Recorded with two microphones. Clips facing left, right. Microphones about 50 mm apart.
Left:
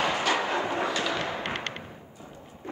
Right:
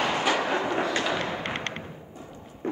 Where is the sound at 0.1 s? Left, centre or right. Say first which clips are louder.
Right 1 dB; centre.